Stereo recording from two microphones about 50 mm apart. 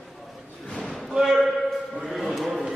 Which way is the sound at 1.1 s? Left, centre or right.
Centre.